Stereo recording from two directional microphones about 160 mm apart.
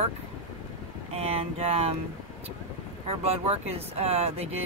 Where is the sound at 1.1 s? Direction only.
40° right (ahead or behind).